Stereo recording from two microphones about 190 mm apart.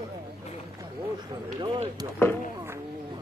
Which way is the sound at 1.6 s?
25° right (ahead or behind).